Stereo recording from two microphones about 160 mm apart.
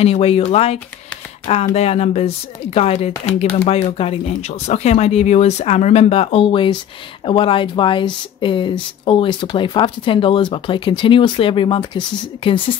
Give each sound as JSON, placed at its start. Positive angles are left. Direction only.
{"t": 0.0, "sound": "speech", "side_deg": 40}